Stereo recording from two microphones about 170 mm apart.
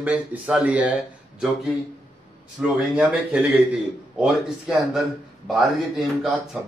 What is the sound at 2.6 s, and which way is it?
A man's voice, 5° right (ahead or behind).